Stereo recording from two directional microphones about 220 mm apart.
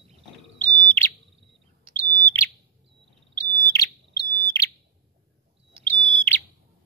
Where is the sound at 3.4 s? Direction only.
15° left (ahead or behind).